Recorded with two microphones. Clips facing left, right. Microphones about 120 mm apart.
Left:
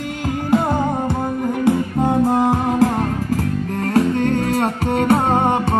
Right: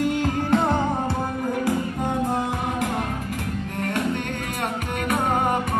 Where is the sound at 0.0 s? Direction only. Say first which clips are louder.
Right 1 dB; centre (ahead or behind).